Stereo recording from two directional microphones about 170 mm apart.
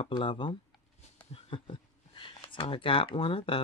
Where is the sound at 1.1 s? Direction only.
30° left (ahead or behind).